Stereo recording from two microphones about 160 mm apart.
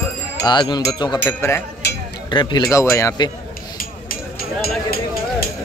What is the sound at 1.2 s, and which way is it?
Speech, 15° left (ahead or behind).